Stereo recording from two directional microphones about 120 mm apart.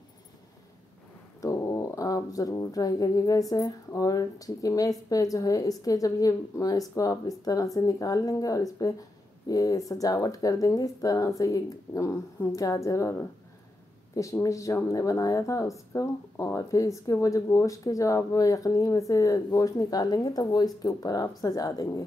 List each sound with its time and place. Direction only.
1.4 s speech: 25° left (ahead or behind)